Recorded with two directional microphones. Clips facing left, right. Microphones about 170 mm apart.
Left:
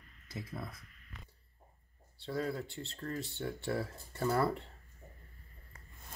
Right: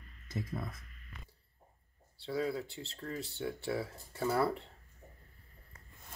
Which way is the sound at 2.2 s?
Centre (ahead or behind).